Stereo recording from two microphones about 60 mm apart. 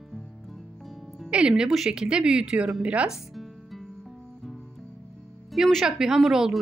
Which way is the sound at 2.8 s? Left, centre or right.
Right.